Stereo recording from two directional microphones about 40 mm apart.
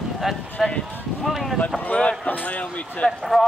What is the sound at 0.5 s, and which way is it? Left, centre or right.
Clip-clop, left.